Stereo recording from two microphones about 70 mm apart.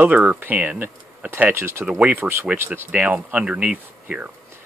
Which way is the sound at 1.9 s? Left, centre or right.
Centre.